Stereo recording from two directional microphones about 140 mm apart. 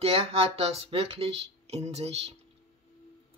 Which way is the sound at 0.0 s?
45° right (ahead or behind).